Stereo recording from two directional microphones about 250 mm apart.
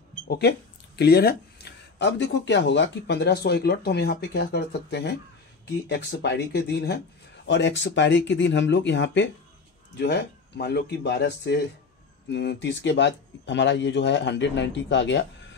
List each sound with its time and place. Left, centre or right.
0.3 s speech: left